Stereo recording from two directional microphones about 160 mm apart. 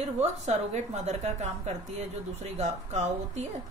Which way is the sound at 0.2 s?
45° right (ahead or behind).